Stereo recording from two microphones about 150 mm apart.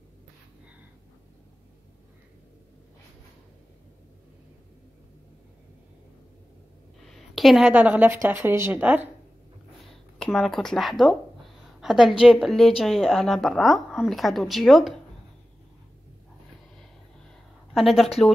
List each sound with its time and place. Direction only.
7.1 s speech: centre (ahead or behind)
9.8 s a woman's voice: 5° left (ahead or behind)
17.7 s a woman's voice: centre (ahead or behind)